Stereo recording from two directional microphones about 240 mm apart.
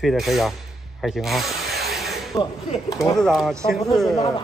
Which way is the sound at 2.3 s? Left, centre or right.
Centre.